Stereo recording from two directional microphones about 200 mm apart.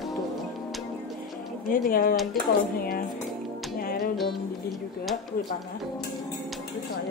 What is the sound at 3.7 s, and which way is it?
Music, 45° left (ahead or behind).